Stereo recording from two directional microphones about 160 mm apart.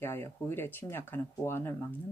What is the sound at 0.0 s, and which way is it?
Speech, 15° left (ahead or behind).